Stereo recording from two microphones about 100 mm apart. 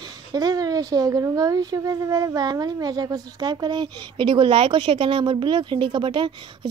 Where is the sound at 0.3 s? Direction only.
40° right (ahead or behind).